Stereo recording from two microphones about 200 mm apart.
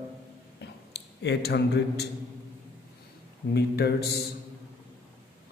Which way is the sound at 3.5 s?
55° left (ahead or behind).